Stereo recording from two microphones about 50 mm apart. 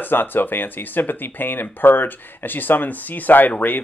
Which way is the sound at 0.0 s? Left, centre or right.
Left.